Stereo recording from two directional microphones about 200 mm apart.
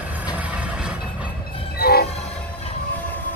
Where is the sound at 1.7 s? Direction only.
50° left (ahead or behind).